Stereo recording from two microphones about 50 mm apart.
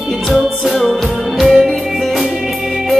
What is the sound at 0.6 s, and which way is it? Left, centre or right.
Music, centre.